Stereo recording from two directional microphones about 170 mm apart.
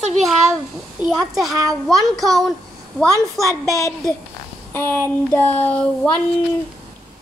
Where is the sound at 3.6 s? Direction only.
20° left (ahead or behind).